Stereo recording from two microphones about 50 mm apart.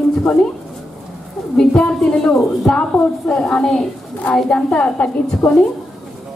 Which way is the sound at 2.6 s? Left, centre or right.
Centre.